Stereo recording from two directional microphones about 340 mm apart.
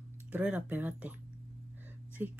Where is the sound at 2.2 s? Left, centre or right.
Centre.